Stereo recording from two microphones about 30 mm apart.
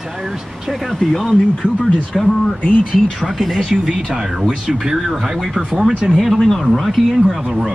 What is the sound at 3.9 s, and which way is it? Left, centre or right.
Speech, right.